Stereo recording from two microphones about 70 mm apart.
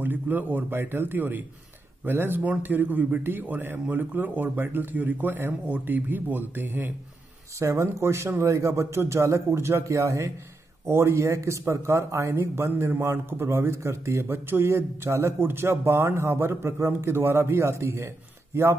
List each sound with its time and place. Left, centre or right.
0.0 s a man's voice: right
7.5 s a man's voice: right